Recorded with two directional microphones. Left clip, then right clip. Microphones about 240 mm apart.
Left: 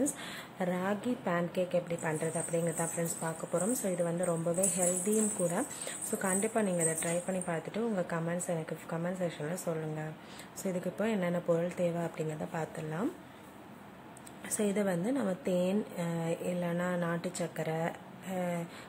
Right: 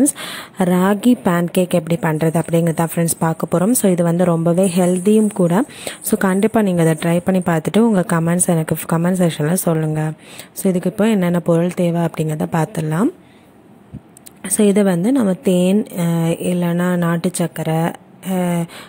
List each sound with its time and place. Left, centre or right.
0.2 s a woman's voice: right
14.4 s a woman's voice: right